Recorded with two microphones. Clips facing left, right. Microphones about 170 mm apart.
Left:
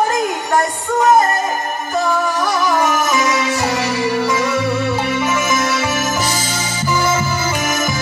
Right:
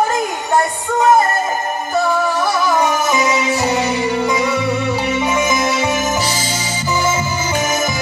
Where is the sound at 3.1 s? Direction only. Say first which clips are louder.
Right 1 dB; 20° right (ahead or behind).